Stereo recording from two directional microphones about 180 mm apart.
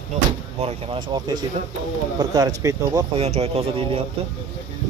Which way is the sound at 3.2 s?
35° right (ahead or behind).